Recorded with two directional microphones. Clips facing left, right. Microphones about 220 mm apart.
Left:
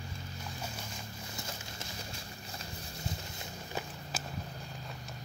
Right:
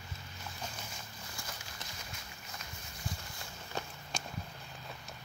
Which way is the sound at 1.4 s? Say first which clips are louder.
Left 3 dB; 25° left (ahead or behind).